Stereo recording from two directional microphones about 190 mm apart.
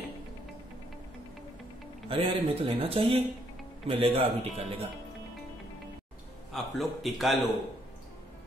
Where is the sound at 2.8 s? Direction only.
30° right (ahead or behind).